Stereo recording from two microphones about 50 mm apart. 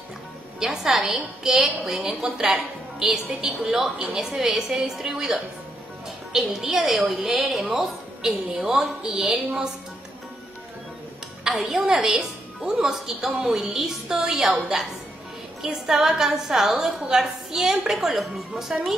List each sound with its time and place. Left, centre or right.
0.6 s a woman's voice: centre
11.4 s a woman's voice: centre